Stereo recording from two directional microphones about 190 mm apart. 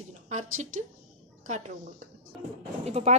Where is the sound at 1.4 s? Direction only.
40° right (ahead or behind).